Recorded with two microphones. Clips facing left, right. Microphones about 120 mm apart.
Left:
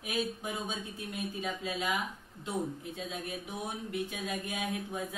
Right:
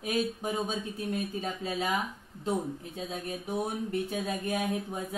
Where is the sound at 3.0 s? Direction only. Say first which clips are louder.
Right 4 dB; 35° right (ahead or behind).